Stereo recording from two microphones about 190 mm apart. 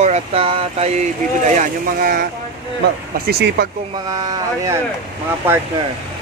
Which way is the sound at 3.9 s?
20° right (ahead or behind).